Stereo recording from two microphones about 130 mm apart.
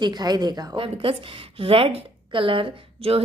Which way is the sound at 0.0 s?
30° right (ahead or behind).